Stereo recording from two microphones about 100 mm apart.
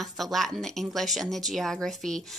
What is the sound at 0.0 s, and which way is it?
Speech, centre (ahead or behind).